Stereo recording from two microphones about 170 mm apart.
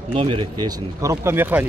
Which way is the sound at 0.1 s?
30° right (ahead or behind).